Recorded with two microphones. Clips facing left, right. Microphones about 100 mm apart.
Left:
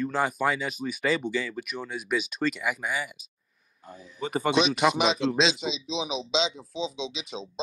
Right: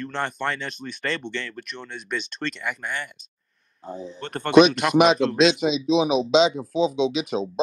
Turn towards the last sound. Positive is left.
turn(degrees=-55)  # may be behind; listen again after turning